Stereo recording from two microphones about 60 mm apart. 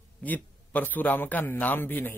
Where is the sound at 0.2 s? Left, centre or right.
Left.